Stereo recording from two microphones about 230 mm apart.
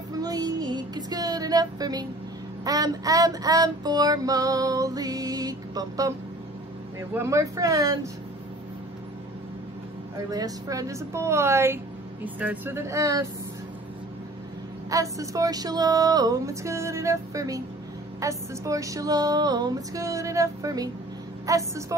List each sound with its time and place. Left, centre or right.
0.1 s child singing: centre
7.2 s child singing: centre
10.3 s child singing: centre
14.9 s child singing: centre